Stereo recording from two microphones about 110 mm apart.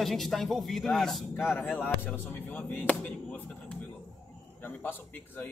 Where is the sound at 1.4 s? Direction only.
15° left (ahead or behind).